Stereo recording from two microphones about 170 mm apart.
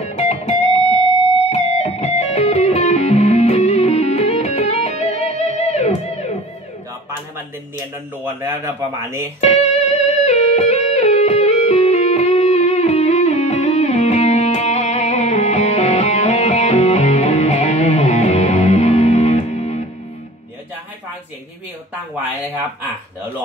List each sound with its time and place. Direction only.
0.2 s music: 40° left (ahead or behind)
8.2 s speech: 15° right (ahead or behind)
9.4 s music: 40° left (ahead or behind)